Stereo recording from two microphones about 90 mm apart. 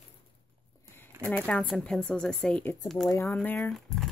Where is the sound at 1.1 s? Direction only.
25° right (ahead or behind).